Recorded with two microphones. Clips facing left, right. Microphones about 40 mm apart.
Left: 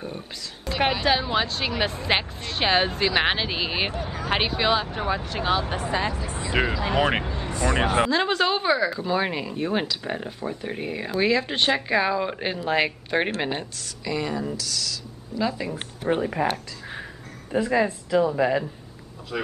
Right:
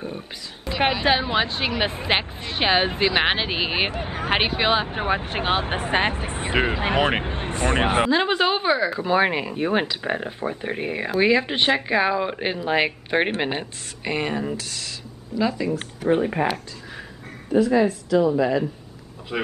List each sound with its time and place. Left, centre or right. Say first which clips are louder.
0.7 s a sound: right 2 dB; centre
1.0 s speech: right 2 dB; right
3.9 s speech: right 2 dB; right
8.1 s speech: right 2 dB; centre
13.5 s speech: right 2 dB; right
16.2 s speech: right 3 dB; right
17.5 s a woman's voice: right 4 dB; centre
19.3 s speech: right 3 dB; right